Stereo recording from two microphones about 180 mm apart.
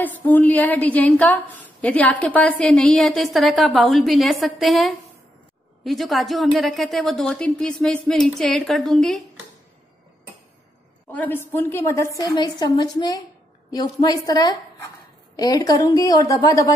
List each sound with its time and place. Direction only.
0.0 s a woman's voice: 10° left (ahead or behind)
11.1 s a woman's voice: 10° left (ahead or behind)